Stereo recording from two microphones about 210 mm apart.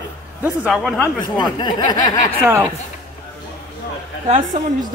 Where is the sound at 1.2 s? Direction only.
20° left (ahead or behind).